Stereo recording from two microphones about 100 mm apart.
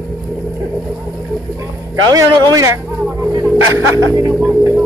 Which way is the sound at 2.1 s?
40° right (ahead or behind).